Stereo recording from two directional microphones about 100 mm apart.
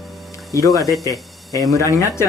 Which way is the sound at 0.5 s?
35° left (ahead or behind).